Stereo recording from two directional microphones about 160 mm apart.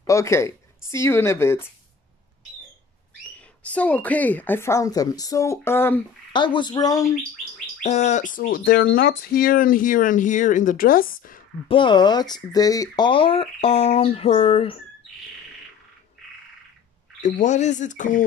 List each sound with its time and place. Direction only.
0.0 s speech: 20° left (ahead or behind)
3.3 s speech: 10° left (ahead or behind)
6.3 s a woman's voice: 30° left (ahead or behind)
7.8 s speech: 45° left (ahead or behind); by 11.4 s 60° left (ahead or behind)
11.6 s speech: 30° left (ahead or behind)
17.2 s speech: 50° left (ahead or behind)